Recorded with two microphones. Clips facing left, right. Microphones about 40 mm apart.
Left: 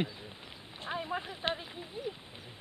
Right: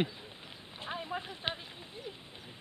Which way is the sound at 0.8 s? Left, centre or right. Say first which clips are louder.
Left 2 dB; centre.